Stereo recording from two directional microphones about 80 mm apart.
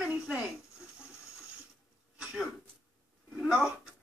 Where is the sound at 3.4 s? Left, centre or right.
Centre.